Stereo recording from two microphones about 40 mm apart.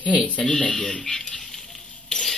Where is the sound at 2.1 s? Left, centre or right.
Centre.